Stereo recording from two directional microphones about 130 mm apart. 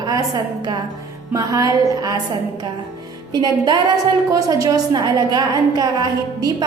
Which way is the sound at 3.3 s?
35° right (ahead or behind).